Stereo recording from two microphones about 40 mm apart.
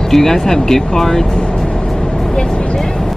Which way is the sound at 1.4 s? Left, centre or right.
Left.